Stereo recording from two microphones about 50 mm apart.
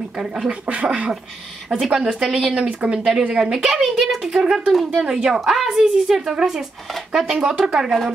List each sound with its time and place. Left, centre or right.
0.5 s a woman's voice: right
3.3 s a woman's voice: centre